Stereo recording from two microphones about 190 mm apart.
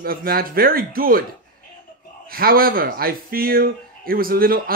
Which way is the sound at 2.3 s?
50° right (ahead or behind).